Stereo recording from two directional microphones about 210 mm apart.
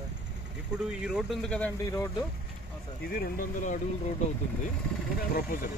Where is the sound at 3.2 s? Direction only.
40° left (ahead or behind).